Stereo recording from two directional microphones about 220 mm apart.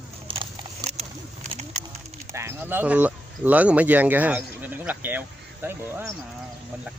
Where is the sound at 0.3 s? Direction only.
25° right (ahead or behind).